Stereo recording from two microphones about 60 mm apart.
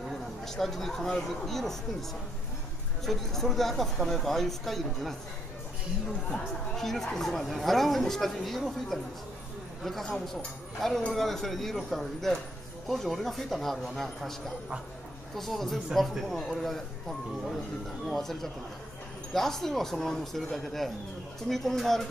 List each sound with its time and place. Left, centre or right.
0.5 s a woman's voice: centre
3.1 s a woman's voice: centre
6.3 s a woman's voice: centre
15.3 s a woman's voice: centre
18.1 s a woman's voice: centre